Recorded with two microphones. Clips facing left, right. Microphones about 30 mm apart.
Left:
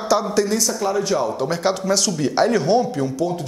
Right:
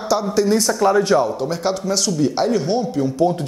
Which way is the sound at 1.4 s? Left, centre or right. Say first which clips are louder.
Left 1 dB; centre.